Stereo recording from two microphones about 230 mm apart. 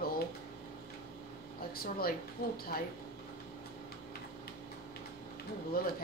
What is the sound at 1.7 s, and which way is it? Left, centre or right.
Speech, left.